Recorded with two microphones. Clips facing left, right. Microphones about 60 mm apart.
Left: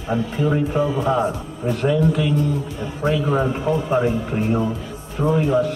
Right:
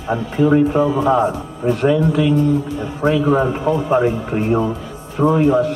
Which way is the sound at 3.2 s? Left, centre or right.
Right.